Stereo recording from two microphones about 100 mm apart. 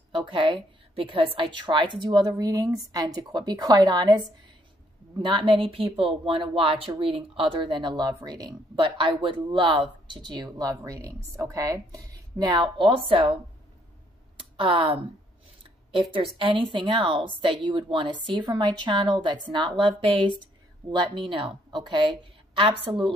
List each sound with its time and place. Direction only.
0.1 s speech: 55° right (ahead or behind)
5.2 s a woman's voice: 55° right (ahead or behind)
8.7 s speech: 55° right (ahead or behind)
14.6 s a woman's voice: 65° right (ahead or behind)
22.6 s a woman's voice: 60° right (ahead or behind)